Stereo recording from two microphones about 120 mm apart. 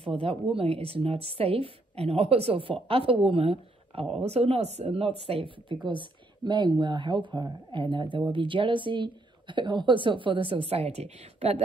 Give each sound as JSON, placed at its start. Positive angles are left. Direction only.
{"t": 0.0, "sound": "a woman's voice", "side_deg": -50}
{"t": 4.8, "sound": "a woman's voice", "side_deg": -50}